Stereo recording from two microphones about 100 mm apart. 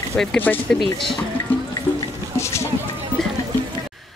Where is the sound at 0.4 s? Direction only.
20° left (ahead or behind).